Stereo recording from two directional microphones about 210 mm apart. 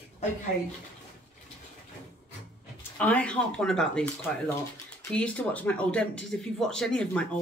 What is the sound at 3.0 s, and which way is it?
Speech, 5° left (ahead or behind).